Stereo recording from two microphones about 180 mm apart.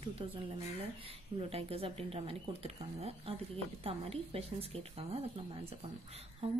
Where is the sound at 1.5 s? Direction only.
35° right (ahead or behind).